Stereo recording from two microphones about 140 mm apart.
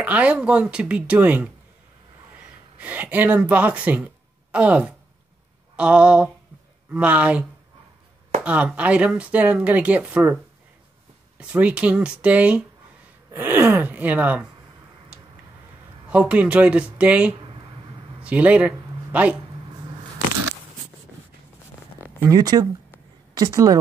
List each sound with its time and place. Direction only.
0.0 s speech: 10° right (ahead or behind)
2.8 s a woman's voice: 10° right (ahead or behind)
16.1 s speech: 10° right (ahead or behind)
22.3 s a woman's voice: 25° right (ahead or behind)